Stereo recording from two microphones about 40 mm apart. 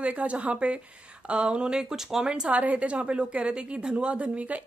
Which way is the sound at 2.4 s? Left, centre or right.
Right.